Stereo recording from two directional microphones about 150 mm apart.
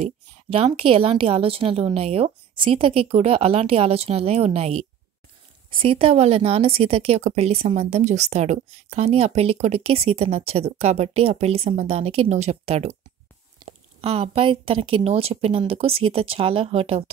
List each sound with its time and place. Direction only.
0.0 s a woman's voice: 40° right (ahead or behind)